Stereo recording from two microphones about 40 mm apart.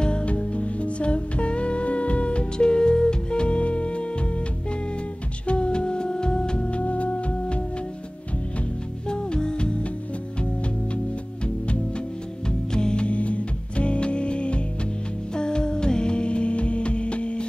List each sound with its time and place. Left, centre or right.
0.0 s music: left
5.5 s music: left
9.1 s music: left
12.7 s music: left